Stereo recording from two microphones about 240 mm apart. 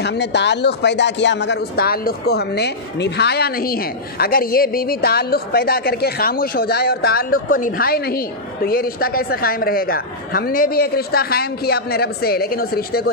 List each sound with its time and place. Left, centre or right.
0.0 s speech: left